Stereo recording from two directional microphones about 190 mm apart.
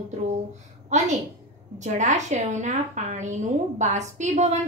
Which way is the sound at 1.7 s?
40° right (ahead or behind).